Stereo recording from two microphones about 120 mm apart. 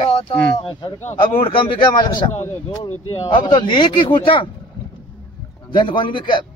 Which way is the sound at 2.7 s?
40° left (ahead or behind).